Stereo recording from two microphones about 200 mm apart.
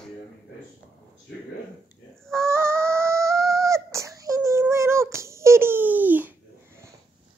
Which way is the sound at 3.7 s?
15° right (ahead or behind).